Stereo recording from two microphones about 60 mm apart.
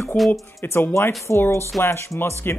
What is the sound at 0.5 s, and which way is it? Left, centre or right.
Speech, left.